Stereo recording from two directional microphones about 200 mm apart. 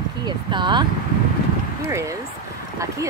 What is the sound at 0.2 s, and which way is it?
Speech, 25° right (ahead or behind).